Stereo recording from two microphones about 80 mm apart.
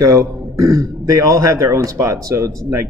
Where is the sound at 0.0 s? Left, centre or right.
Right.